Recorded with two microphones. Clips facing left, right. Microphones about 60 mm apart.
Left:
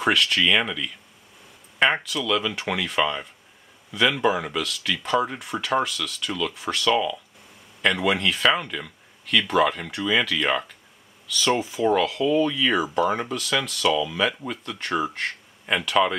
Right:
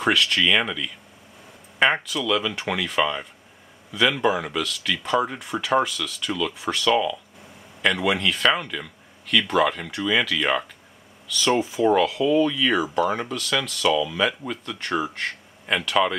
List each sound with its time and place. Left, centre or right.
0.0 s speech: centre